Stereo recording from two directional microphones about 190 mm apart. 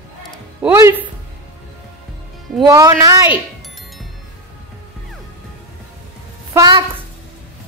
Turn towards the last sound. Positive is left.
turn(degrees=-25)  # may be behind; listen again after turning